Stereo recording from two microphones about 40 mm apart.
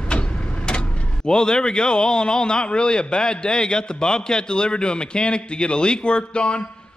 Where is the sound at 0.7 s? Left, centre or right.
Left.